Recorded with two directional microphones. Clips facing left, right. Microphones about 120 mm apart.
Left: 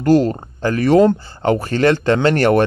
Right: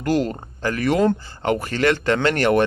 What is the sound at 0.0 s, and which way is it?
Speech, 30° left (ahead or behind).